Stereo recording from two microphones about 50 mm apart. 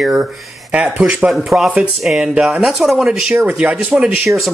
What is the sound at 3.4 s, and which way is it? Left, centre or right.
Speech, right.